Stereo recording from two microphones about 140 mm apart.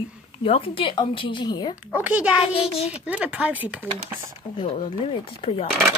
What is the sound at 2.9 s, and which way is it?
Speech, 10° right (ahead or behind).